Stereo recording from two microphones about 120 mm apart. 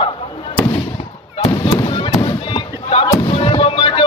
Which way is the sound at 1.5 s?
40° left (ahead or behind).